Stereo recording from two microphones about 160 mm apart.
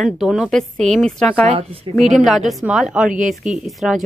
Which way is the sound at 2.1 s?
Centre (ahead or behind).